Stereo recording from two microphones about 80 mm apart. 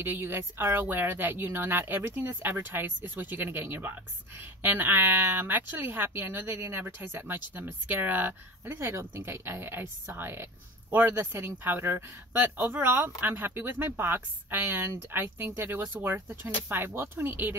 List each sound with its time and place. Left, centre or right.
0.0 s speech: right